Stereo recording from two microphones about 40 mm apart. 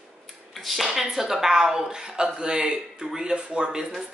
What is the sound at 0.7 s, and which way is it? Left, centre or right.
A man's voice, centre.